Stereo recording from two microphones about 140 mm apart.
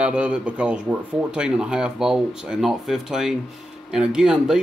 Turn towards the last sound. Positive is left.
turn(degrees=-5)  # may be behind; listen again after turning